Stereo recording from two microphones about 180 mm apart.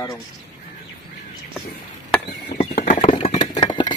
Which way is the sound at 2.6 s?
35° left (ahead or behind).